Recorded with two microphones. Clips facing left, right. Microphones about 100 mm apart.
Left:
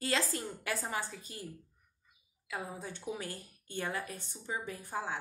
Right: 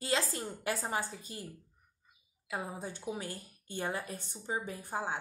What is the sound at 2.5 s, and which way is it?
A woman's voice, 30° right (ahead or behind).